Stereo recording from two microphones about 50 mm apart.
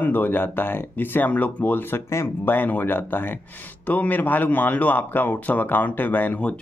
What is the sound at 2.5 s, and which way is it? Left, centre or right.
Speech, left.